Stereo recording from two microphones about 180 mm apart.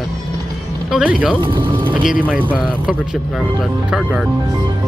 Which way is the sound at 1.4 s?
25° right (ahead or behind).